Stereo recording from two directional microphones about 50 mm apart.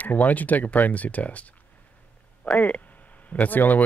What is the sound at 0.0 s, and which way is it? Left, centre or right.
Speech, left.